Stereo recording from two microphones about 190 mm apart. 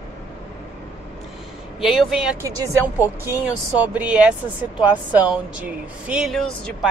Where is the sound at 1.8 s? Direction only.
Centre (ahead or behind).